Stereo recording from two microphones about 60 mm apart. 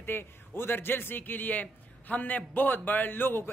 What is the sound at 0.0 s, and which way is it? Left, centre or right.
A man's voice, left.